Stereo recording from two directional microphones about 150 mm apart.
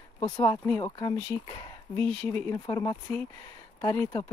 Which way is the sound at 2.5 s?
25° left (ahead or behind).